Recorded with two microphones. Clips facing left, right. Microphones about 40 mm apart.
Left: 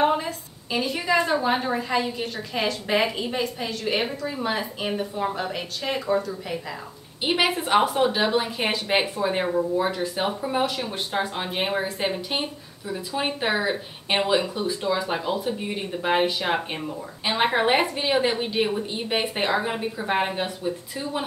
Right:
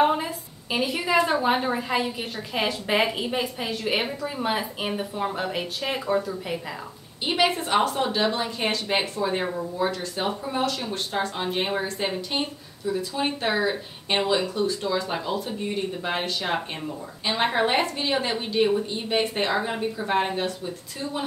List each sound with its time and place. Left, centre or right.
0.0 s a sound: centre
0.7 s a woman's voice: centre
7.2 s a woman's voice: centre